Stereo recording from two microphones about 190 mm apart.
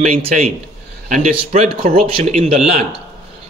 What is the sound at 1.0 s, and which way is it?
Speech, 40° right (ahead or behind).